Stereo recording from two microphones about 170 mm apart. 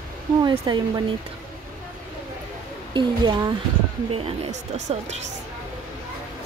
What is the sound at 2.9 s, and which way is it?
Speech, 25° right (ahead or behind).